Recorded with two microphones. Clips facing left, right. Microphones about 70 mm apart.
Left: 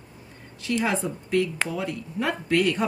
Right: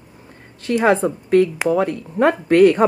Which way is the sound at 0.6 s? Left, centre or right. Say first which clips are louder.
Right 9 dB; right.